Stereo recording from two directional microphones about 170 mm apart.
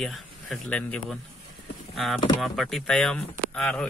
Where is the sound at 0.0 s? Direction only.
Centre (ahead or behind).